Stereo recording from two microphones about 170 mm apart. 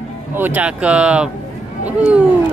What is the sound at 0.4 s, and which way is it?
Speech, 10° right (ahead or behind).